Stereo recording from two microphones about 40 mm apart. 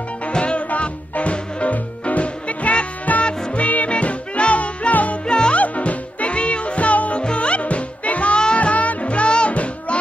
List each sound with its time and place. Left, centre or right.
0.3 s music: left
5.2 s music: left
5.6 s music: left